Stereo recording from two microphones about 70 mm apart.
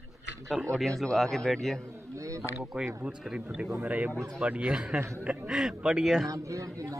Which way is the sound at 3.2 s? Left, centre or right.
Centre.